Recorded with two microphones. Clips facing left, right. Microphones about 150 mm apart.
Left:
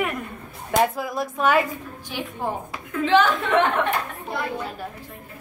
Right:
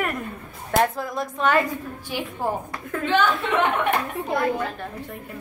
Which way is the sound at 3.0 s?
90° left.